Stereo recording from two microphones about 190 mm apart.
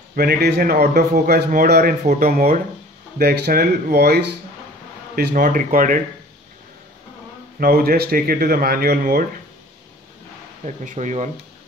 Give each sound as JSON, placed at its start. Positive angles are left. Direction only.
{"t": 0.1, "sound": "a man's voice", "side_deg": -55}
{"t": 7.6, "sound": "a man's voice", "side_deg": -50}
{"t": 10.6, "sound": "speech", "side_deg": -40}